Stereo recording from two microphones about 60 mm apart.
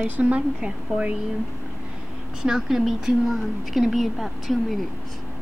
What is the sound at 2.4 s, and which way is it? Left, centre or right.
A woman's voice, centre.